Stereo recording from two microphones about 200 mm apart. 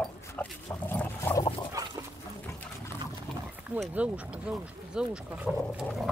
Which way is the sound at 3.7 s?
5° right (ahead or behind).